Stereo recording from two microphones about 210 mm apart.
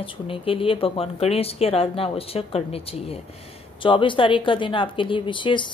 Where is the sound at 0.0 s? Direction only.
25° left (ahead or behind).